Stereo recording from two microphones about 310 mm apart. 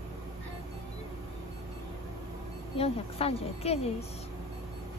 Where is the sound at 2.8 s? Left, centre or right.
Centre.